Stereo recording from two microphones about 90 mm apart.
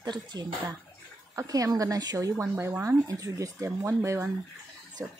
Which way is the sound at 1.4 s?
40° right (ahead or behind).